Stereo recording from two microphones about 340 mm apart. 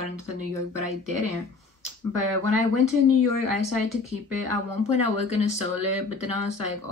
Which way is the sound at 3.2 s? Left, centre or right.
Left.